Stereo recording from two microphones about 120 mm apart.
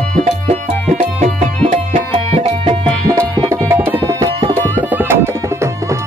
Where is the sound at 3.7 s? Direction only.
20° right (ahead or behind).